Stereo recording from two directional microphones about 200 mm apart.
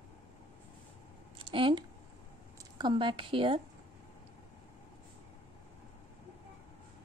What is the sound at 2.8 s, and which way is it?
Speech, 25° right (ahead or behind).